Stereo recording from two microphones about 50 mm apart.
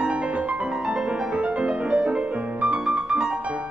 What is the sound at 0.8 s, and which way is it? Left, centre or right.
Music, centre.